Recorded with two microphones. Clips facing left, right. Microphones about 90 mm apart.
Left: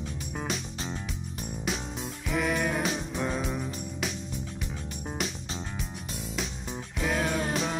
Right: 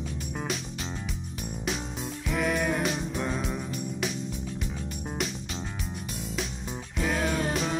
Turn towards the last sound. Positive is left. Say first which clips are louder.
# right 1 dB
turn(degrees=0)  # may be behind; listen again after turning